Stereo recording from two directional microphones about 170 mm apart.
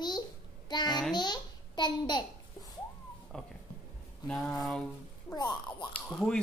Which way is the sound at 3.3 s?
5° left (ahead or behind).